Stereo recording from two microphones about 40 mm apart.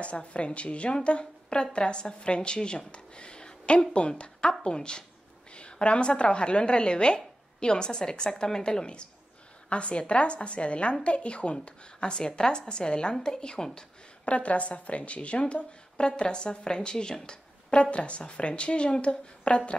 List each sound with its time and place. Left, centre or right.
0.0 s a woman's voice: left
14.2 s speech: left